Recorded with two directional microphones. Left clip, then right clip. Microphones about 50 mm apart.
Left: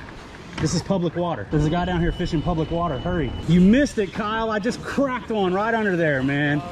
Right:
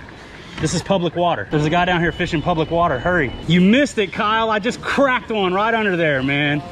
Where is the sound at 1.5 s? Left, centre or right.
Centre.